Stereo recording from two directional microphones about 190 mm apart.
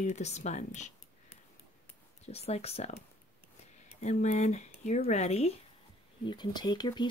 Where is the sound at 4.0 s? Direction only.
35° left (ahead or behind).